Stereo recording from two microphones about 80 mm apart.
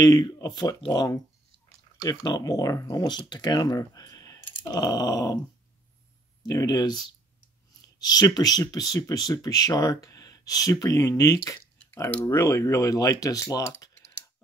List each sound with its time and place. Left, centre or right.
0.0 s speech: left
0.6 s speech: left
3.2 s speech: left
6.4 s speech: left
8.0 s speech: left